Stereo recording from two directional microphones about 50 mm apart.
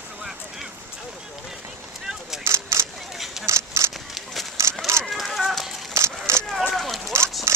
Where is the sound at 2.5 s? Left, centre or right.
Right.